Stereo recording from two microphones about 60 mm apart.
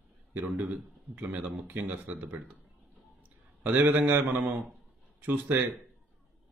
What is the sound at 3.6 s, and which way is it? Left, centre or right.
A man's voice, right.